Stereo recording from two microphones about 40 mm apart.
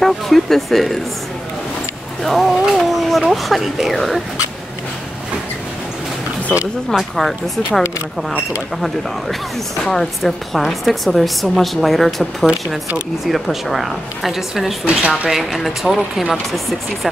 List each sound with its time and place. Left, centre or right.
0.0 s speech: centre
2.2 s speech: centre
7.2 s speech: centre
9.8 s speech: centre
14.9 s speech: right
15.3 s speech: centre